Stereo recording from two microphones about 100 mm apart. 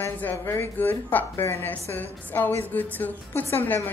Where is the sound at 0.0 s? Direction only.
20° left (ahead or behind).